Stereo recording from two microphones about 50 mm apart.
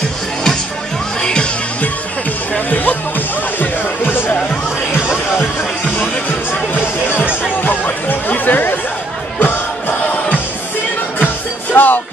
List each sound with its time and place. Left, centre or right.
1.2 s music: centre
2.7 s music: left
5.6 s music: left
7.6 s chatter: left
9.4 s music: left
11.7 s music: left